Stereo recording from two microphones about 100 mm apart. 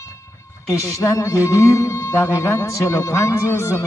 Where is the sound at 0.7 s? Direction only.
30° left (ahead or behind).